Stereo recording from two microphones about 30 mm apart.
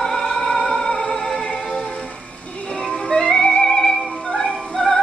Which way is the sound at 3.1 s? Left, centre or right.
Left.